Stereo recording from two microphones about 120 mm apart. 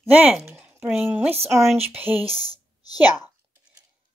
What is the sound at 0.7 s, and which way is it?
Speech, 15° right (ahead or behind).